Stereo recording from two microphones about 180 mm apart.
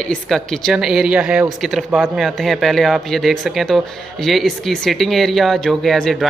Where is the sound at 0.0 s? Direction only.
5° left (ahead or behind).